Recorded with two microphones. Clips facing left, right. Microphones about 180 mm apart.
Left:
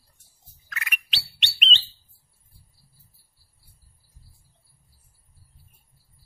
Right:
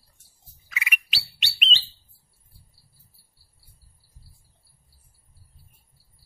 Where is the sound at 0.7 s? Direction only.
5° right (ahead or behind).